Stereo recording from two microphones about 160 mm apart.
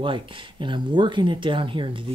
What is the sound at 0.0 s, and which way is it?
Speech, 30° right (ahead or behind).